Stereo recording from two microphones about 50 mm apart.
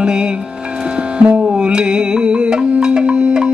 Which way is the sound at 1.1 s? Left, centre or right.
Right.